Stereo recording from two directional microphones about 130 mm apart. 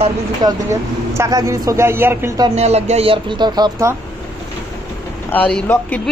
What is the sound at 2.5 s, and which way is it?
Speech, 55° right (ahead or behind).